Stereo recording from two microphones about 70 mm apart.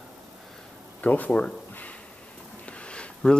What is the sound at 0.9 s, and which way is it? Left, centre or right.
Speech, left.